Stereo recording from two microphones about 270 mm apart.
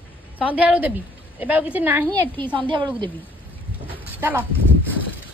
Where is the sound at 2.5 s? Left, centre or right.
Centre.